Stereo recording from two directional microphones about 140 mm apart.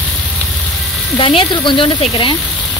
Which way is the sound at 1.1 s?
35° left (ahead or behind).